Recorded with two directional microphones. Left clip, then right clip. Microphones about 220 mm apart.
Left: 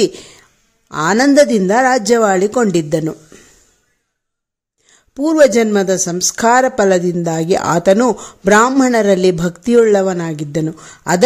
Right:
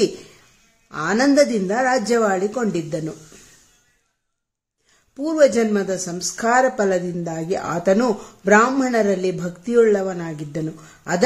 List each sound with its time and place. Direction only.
0.8 s speech: 40° left (ahead or behind)
5.1 s speech: 40° left (ahead or behind)